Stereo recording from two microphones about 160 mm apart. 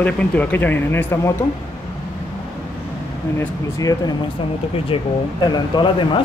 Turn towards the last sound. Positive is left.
turn(degrees=30)  # may be behind; listen again after turning